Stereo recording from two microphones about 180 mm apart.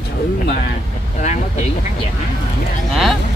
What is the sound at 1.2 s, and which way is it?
Speech, 40° left (ahead or behind).